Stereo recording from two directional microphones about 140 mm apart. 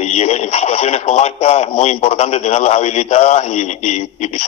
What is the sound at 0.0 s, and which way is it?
Speech, 50° left (ahead or behind).